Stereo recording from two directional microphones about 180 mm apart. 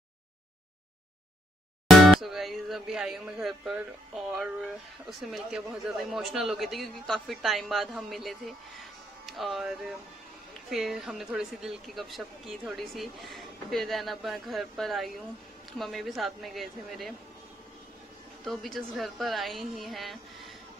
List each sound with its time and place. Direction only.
1.9 s music: centre (ahead or behind)
5.2 s a woman's voice: centre (ahead or behind)
18.4 s a woman's voice: centre (ahead or behind)